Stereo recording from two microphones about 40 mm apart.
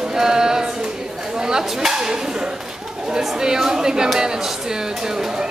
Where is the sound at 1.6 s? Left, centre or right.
Centre.